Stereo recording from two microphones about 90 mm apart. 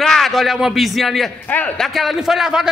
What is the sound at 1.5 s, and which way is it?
Speech, 20° left (ahead or behind).